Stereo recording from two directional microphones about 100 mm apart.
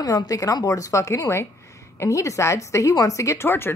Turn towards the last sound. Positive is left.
turn(degrees=25)  # may be behind; listen again after turning